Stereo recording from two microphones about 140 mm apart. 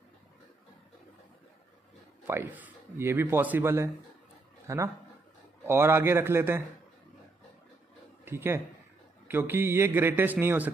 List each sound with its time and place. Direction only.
2.2 s speech: 15° right (ahead or behind)
8.3 s speech: 15° right (ahead or behind)